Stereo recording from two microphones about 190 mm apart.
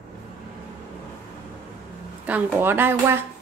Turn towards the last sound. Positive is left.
turn(degrees=-10)  # may be behind; listen again after turning